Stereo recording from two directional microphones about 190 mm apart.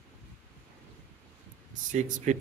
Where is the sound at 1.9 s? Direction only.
40° right (ahead or behind).